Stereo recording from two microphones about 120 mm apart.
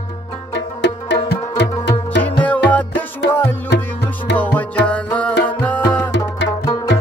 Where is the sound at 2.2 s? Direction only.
10° left (ahead or behind).